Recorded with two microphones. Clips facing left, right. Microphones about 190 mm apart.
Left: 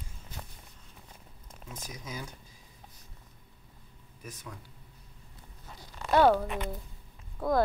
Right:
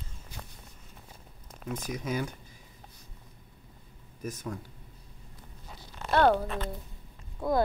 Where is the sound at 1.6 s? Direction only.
60° right (ahead or behind).